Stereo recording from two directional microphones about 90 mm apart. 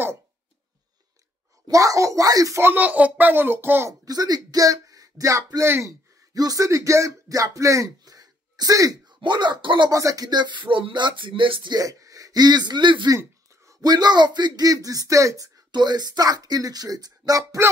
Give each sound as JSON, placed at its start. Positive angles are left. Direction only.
{"t": 1.7, "sound": "speech", "side_deg": -40}
{"t": 2.6, "sound": "a child's voice", "side_deg": -20}
{"t": 4.0, "sound": "speech", "side_deg": -45}
{"t": 9.2, "sound": "speech", "side_deg": -55}
{"t": 9.8, "sound": "speech", "side_deg": -40}
{"t": 11.7, "sound": "speech", "side_deg": -40}
{"t": 13.7, "sound": "speech", "side_deg": -45}